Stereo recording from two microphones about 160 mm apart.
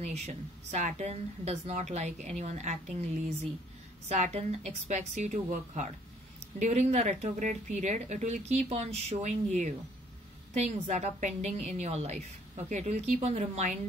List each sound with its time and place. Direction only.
0.1 s speech: 45° right (ahead or behind)